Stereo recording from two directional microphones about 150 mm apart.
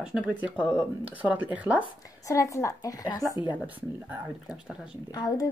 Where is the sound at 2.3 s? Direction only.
20° left (ahead or behind).